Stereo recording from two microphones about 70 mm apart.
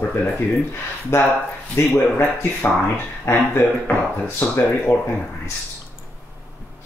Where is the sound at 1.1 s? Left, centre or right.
Left.